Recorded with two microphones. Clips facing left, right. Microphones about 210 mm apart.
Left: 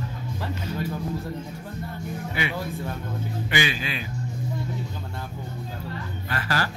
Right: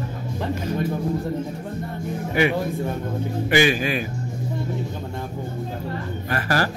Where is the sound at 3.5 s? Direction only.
45° right (ahead or behind).